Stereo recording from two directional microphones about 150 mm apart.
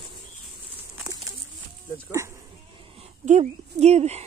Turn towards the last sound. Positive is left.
turn(degrees=-45)  # may be behind; listen again after turning